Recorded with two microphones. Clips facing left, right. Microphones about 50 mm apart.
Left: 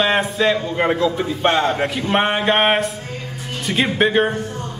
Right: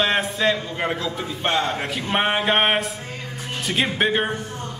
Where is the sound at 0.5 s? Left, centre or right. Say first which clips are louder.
Left 6 dB; centre.